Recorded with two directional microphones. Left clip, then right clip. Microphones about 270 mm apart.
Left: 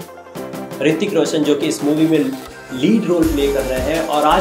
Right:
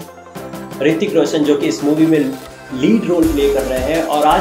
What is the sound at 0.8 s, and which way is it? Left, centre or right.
Speech, centre.